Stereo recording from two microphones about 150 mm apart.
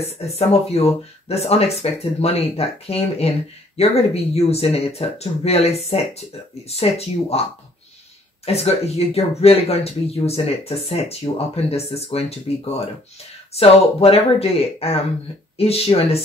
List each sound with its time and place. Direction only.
0.0 s speech: 45° left (ahead or behind)
8.5 s speech: 45° left (ahead or behind)